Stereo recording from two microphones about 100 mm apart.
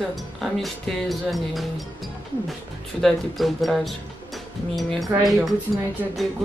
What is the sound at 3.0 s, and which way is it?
Speech, centre (ahead or behind).